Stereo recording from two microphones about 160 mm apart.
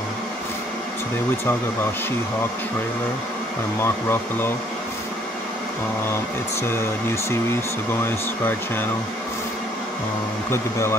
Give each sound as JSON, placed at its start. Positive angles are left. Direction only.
{"t": 3.8, "sound": "speech", "side_deg": 15}
{"t": 6.7, "sound": "speech", "side_deg": 15}
{"t": 10.5, "sound": "speech", "side_deg": 15}